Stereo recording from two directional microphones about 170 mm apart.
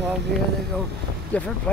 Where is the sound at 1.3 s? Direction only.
10° left (ahead or behind).